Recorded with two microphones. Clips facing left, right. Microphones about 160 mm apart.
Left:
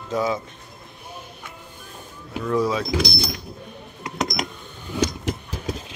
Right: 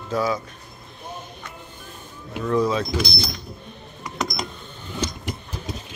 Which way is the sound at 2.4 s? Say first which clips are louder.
Right 1 dB; 10° left (ahead or behind).